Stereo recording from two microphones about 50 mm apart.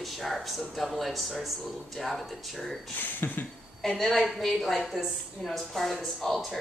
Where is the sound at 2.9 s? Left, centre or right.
Left.